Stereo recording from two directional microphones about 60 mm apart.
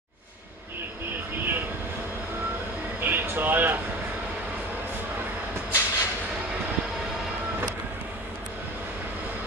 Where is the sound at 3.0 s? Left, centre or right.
Right.